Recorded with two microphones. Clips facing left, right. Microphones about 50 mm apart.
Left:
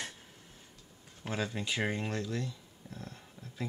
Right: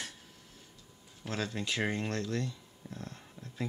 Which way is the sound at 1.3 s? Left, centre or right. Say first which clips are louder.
Even; centre.